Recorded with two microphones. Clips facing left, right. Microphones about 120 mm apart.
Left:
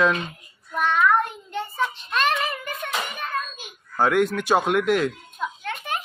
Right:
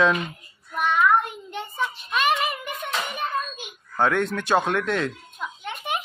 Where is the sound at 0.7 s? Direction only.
15° right (ahead or behind).